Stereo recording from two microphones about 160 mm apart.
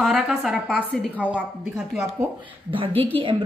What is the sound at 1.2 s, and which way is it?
A woman's voice, 10° right (ahead or behind).